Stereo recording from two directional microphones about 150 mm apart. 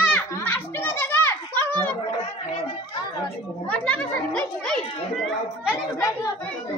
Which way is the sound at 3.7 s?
10° left (ahead or behind).